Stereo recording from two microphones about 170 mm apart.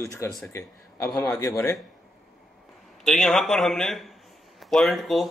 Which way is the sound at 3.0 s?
5° left (ahead or behind).